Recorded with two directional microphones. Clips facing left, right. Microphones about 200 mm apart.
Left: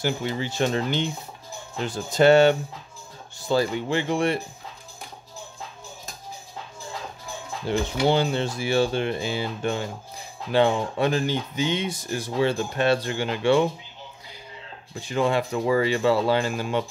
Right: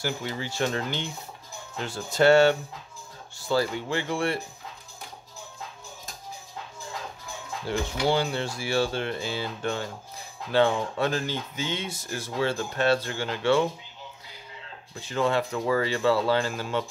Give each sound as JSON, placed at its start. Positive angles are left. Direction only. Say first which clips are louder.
{"t": 0.0, "sound": "speech", "louder": "left 5 dB", "side_deg": 20}
{"t": 7.6, "sound": "speech", "louder": "left 4 dB", "side_deg": 20}
{"t": 15.0, "sound": "speech", "louder": "left 2 dB", "side_deg": 15}